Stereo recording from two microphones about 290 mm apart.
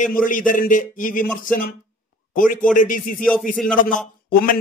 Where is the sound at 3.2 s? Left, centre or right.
Centre.